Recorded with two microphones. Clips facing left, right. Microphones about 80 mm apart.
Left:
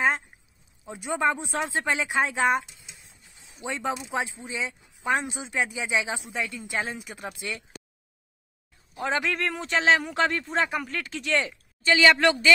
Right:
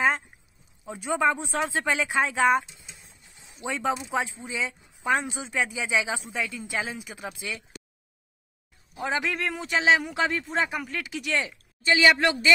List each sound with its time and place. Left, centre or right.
0.8 s speech: centre
8.9 s a man's voice: centre